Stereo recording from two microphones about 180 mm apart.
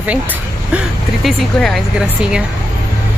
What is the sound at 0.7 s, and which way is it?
A woman's voice, centre (ahead or behind).